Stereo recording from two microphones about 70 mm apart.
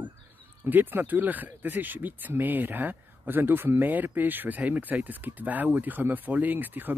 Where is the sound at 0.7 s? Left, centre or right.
Right.